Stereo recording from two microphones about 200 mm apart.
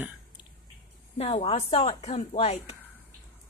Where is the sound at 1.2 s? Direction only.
30° left (ahead or behind).